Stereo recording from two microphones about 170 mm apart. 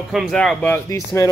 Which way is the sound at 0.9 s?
20° left (ahead or behind).